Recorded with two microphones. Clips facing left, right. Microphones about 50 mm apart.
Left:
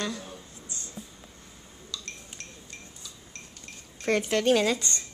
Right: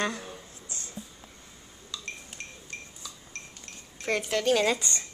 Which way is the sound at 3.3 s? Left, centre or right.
Right.